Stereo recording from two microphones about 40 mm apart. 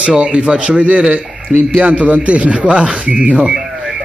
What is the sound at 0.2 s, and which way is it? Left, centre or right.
Speech, right.